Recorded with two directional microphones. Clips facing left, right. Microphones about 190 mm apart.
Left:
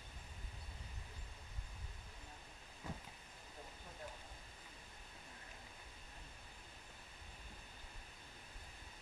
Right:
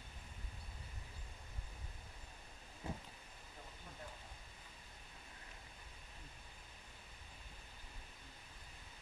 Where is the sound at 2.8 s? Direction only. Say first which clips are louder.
Right 3 dB; 25° right (ahead or behind).